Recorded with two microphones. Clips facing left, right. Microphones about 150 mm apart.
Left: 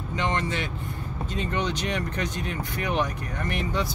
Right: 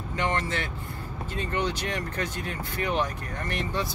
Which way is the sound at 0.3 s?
15° left (ahead or behind).